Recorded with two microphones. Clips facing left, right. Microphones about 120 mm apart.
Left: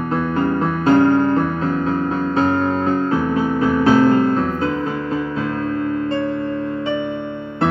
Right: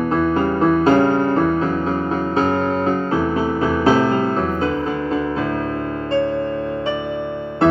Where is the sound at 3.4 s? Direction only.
25° right (ahead or behind).